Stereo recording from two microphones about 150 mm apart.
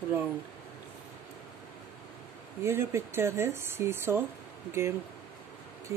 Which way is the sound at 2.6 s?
15° right (ahead or behind).